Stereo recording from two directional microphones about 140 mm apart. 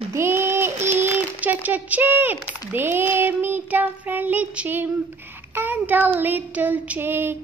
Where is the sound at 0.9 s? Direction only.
15° right (ahead or behind).